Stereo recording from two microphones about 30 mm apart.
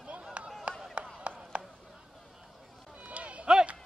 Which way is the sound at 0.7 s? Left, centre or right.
Right.